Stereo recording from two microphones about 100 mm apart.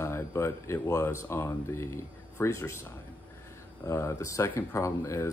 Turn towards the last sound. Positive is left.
turn(degrees=30)  # may be behind; listen again after turning